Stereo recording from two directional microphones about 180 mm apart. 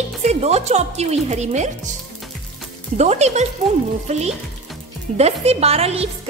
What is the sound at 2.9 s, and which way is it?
Speech, 40° right (ahead or behind).